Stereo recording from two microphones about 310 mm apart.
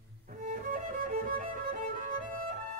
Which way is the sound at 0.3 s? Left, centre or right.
Right.